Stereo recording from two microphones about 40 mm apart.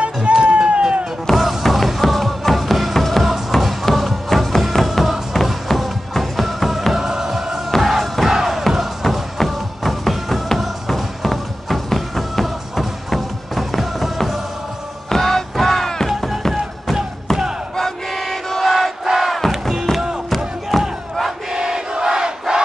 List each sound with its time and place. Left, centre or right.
0.0 s music: right
1.3 s music: centre
15.0 s music: centre
17.7 s battle cry: centre
19.0 s crowd: centre
19.9 s music: centre
20.2 s crowd: centre
21.5 s a sound: centre